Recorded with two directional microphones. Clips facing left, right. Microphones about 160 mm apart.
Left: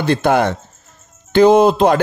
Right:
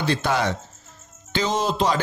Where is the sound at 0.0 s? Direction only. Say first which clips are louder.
Left 8 dB; 55° left (ahead or behind).